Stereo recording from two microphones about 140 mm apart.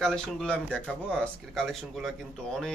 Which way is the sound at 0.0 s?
5° left (ahead or behind).